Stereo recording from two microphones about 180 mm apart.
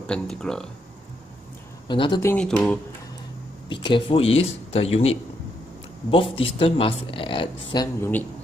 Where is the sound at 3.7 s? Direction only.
25° left (ahead or behind).